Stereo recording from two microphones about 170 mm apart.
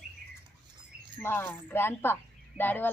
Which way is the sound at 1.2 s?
10° left (ahead or behind).